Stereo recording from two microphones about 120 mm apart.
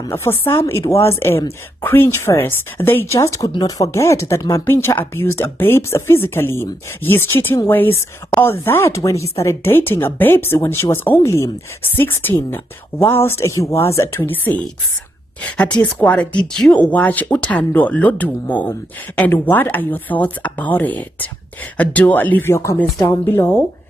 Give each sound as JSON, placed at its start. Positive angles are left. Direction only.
{"t": 0.1, "sound": "speech", "side_deg": 20}